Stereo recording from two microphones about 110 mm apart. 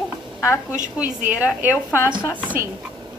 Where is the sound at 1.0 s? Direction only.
15° right (ahead or behind).